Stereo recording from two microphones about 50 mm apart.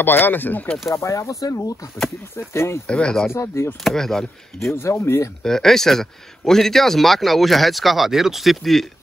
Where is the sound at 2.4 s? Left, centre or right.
Left.